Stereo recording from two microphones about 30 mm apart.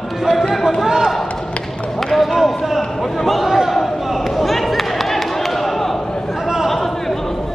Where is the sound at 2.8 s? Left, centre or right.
Centre.